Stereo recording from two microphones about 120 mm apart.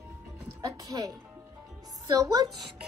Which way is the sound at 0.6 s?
30° right (ahead or behind).